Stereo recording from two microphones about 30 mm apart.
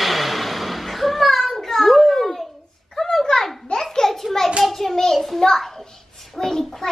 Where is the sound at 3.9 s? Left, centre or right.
Centre.